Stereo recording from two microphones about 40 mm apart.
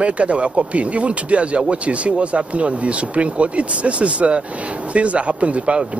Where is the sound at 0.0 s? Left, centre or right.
Right.